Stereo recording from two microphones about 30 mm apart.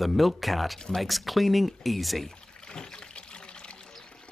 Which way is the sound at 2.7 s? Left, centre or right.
Left.